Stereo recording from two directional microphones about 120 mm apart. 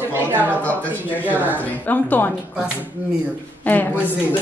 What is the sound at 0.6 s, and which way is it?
A woman's voice, 15° left (ahead or behind).